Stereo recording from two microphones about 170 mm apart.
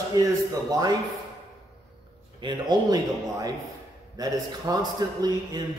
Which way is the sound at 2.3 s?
25° right (ahead or behind).